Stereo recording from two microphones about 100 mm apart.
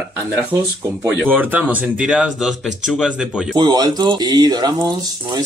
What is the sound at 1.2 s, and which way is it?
Speech, 15° right (ahead or behind).